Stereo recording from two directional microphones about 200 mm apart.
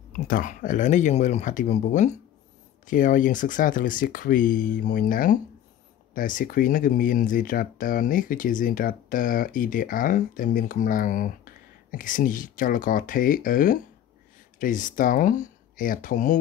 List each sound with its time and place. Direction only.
0.3 s speech: 40° left (ahead or behind)